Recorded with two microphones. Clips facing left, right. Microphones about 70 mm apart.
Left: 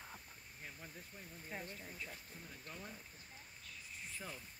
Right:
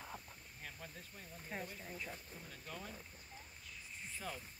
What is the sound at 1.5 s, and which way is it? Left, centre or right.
Speech, centre.